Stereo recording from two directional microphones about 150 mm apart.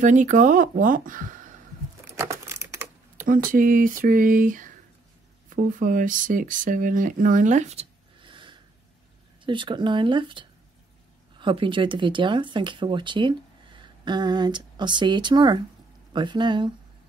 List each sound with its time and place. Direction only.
0.0 s speech: 55° right (ahead or behind)
2.1 s a sound: 20° right (ahead or behind)
3.2 s speech: 65° right (ahead or behind); by 7.9 s 50° right (ahead or behind)
8.2 s snort: 35° right (ahead or behind)
9.4 s speech: 35° right (ahead or behind)